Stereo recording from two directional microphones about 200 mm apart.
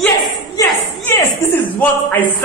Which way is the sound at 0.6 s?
15° left (ahead or behind).